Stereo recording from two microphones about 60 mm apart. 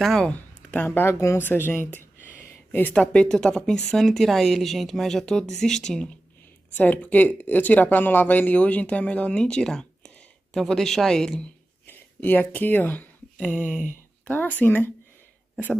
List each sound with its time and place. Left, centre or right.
0.2 s a sound: left
0.8 s speech: left
1.4 s speech: left
2.0 s a sound: left
2.9 s speech: centre
6.7 s speech: left
9.4 s speech: centre
11.8 s speech: left
13.6 s speech: right
14.2 s speech: left